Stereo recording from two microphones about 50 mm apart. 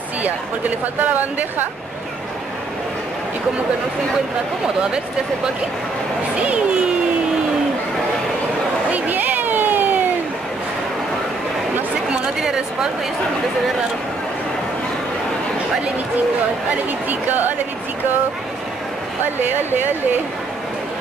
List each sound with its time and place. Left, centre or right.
0.2 s speech: right
6.3 s speech: right
8.9 s a sound: right
17.1 s speech: right
19.4 s speech: right